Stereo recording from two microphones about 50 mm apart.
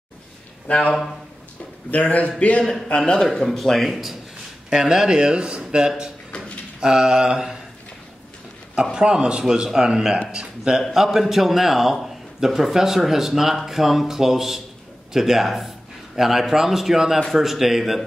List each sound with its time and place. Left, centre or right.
0.7 s a man's voice: left
2.9 s a man's voice: centre
4.6 s speech: centre
8.9 s speech: centre
10.8 s a man's voice: centre